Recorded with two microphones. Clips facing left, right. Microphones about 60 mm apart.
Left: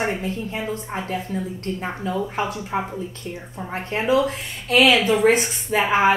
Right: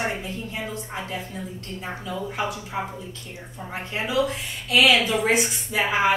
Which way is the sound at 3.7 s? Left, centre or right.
Left.